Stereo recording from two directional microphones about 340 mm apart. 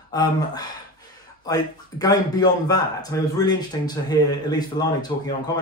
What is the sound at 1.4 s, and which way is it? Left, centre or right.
Speech, centre.